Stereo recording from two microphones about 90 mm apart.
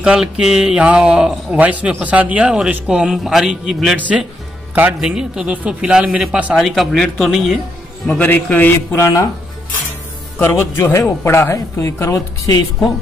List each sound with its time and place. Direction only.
0.0 s a man's voice: 10° right (ahead or behind)
8.1 s a man's voice: 20° left (ahead or behind); by 9.3 s 35° left (ahead or behind)
10.4 s a man's voice: 30° left (ahead or behind)